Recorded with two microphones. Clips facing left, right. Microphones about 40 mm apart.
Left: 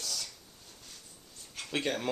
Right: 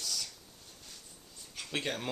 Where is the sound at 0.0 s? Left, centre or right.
Centre.